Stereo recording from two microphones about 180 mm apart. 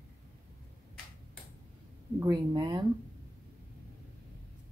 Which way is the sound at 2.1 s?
20° right (ahead or behind).